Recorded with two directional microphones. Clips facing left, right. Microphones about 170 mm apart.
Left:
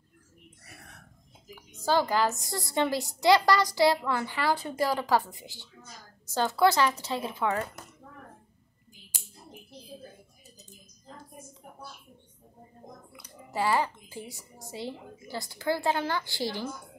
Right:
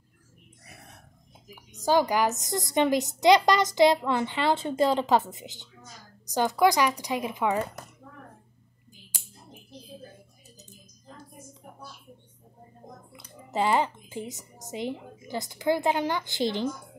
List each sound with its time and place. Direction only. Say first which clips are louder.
0.7 s whispering: right 2 dB; 20° right (ahead or behind)
1.9 s a woman's voice: right 2 dB; 15° right (ahead or behind)
13.1 s a woman's voice: right 4 dB; 20° right (ahead or behind)